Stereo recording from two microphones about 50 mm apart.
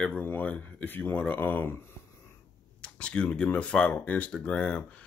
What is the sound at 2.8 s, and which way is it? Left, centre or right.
Speech, left.